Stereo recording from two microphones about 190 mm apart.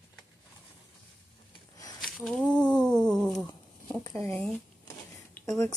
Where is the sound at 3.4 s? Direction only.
20° left (ahead or behind).